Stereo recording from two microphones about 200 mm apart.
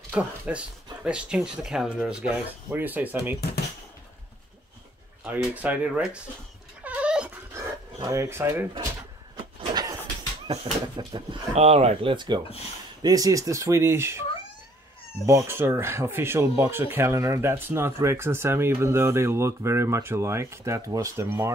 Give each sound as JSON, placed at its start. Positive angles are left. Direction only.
{"t": 0.1, "sound": "speech", "side_deg": -5}
{"t": 5.2, "sound": "speech", "side_deg": -5}
{"t": 6.8, "sound": "a sound", "side_deg": -5}
{"t": 8.0, "sound": "speech", "side_deg": -15}
{"t": 9.4, "sound": "vehicle", "side_deg": -25}
{"t": 10.4, "sound": "speech", "side_deg": -25}
{"t": 15.2, "sound": "speech", "side_deg": -15}